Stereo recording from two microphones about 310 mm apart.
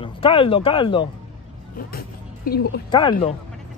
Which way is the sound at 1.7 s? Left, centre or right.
Left.